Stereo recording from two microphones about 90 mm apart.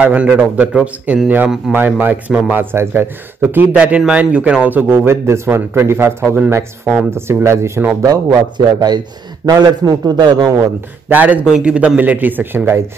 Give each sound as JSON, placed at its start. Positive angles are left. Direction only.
{"t": 0.0, "sound": "a man's voice", "side_deg": -15}
{"t": 8.1, "sound": "a man's voice", "side_deg": -45}
{"t": 11.1, "sound": "speech", "side_deg": -20}